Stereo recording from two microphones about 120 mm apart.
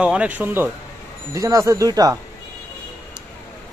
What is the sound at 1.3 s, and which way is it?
Speech, 25° right (ahead or behind).